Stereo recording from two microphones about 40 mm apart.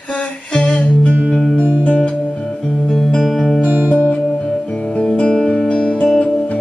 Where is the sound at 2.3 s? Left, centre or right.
Centre.